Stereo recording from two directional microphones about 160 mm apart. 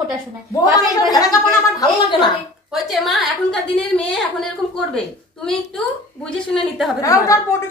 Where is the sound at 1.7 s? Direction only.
30° left (ahead or behind).